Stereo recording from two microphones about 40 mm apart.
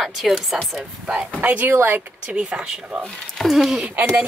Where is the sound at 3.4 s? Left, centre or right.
Centre.